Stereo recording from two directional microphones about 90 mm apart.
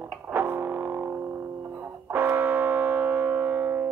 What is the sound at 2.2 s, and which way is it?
Music, 20° right (ahead or behind).